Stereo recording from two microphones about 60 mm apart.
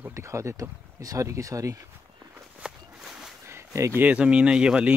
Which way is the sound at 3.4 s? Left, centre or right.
Right.